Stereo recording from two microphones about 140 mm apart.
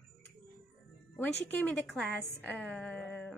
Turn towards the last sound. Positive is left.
turn(degrees=5)  # may be behind; listen again after turning